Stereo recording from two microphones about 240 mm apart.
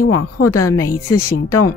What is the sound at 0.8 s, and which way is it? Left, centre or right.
Speech, centre.